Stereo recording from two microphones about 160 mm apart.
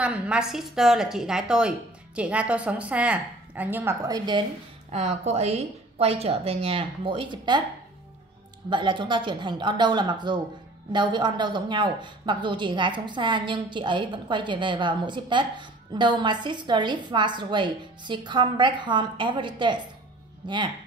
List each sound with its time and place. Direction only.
0.0 s a woman's voice: 5° right (ahead or behind); by 4.5 s 25° right (ahead or behind)
4.9 s a woman's voice: 45° right (ahead or behind)
8.6 s a woman's voice: 30° right (ahead or behind)